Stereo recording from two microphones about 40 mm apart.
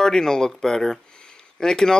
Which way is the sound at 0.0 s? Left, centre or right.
Centre.